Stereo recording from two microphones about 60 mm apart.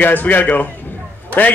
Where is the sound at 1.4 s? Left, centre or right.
Left.